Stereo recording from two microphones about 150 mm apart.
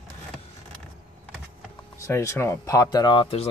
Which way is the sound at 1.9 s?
20° left (ahead or behind).